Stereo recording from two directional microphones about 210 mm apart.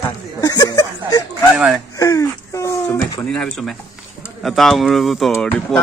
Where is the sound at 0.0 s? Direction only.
20° left (ahead or behind).